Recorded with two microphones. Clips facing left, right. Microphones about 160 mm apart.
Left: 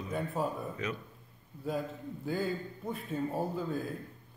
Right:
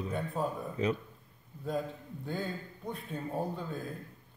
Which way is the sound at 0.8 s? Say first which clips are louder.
Right 8 dB; 35° right (ahead or behind).